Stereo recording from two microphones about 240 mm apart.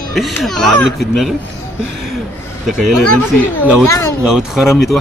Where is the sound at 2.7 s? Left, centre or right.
Centre.